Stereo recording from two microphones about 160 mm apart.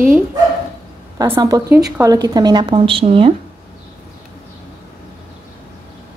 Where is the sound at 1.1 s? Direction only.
20° right (ahead or behind); by 3.3 s 35° right (ahead or behind).